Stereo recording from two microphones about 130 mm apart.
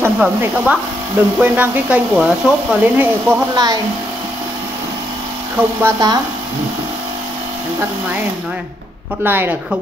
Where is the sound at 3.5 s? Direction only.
30° right (ahead or behind).